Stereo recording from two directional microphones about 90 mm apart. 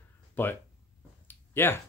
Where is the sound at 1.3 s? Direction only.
25° left (ahead or behind).